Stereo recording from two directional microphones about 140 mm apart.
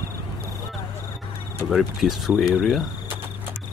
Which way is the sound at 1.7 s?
Centre (ahead or behind).